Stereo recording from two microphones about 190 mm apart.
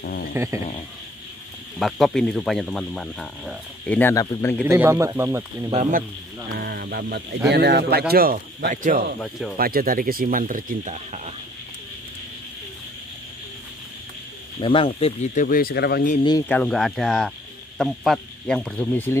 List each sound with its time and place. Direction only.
0.0 s a sound: 55° left (ahead or behind)
0.3 s speech: 15° right (ahead or behind)
1.8 s speech: centre (ahead or behind)
4.6 s speech: 15° right (ahead or behind)
5.7 s speech: 40° right (ahead or behind)
9.2 s speech: centre (ahead or behind)
9.6 s speech: 50° right (ahead or behind)
14.6 s speech: 30° left (ahead or behind)
15.4 s speech: 50° left (ahead or behind)
16.4 s speech: 5° left (ahead or behind)